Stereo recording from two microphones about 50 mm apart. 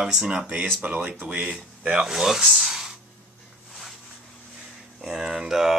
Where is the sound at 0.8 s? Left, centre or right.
Right; by 3.0 s centre.